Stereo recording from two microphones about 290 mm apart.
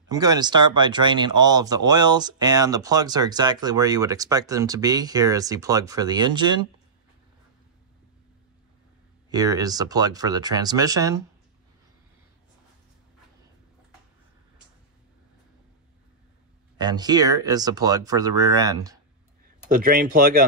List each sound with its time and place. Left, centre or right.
0.1 s speech: centre
9.3 s speech: centre
16.8 s speech: centre
19.7 s speech: right